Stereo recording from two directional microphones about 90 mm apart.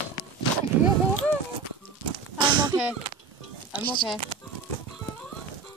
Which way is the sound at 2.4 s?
55° right (ahead or behind).